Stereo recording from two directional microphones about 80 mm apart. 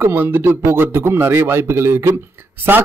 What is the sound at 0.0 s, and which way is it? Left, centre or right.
A man's voice, right.